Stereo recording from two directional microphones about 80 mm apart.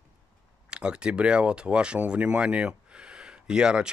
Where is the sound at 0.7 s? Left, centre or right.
Centre.